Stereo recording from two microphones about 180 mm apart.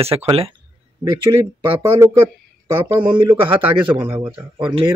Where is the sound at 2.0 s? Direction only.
15° right (ahead or behind).